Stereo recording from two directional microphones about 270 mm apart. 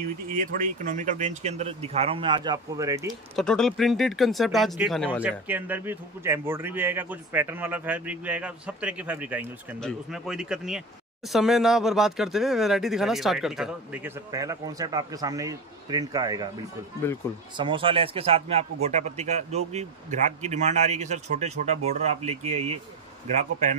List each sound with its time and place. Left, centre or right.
0.0 s a man's voice: right; by 3.2 s centre
3.3 s speech: centre
5.5 s speech: centre
14.3 s speech: centre
17.2 s speech: centre
17.6 s a man's voice: centre